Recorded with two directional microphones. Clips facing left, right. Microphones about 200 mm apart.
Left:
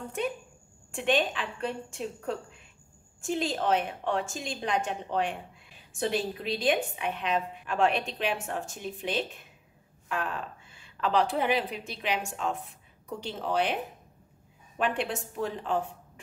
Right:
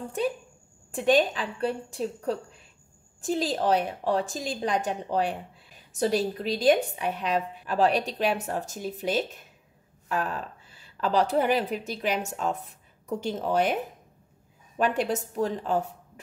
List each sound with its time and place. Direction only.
0.9 s a woman's voice: 40° right (ahead or behind)
14.8 s a woman's voice: 40° right (ahead or behind)